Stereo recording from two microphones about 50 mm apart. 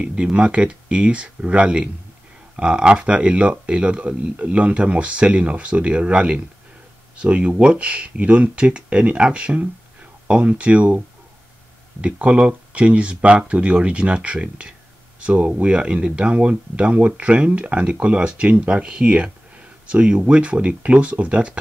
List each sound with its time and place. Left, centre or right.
0.0 s speech: right
12.0 s speech: right